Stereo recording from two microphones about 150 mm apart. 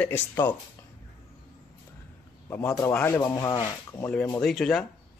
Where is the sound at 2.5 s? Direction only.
20° left (ahead or behind).